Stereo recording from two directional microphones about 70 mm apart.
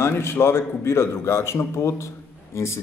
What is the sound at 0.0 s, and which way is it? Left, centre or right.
A man's voice, left.